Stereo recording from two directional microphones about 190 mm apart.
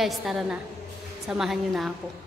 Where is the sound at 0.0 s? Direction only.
Centre (ahead or behind).